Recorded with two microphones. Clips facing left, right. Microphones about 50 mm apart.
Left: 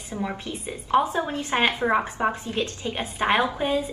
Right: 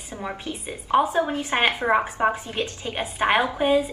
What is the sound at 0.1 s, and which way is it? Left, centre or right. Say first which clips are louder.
Speech: left 3 dB; centre.